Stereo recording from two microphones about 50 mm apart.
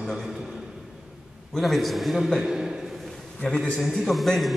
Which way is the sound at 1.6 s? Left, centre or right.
Centre.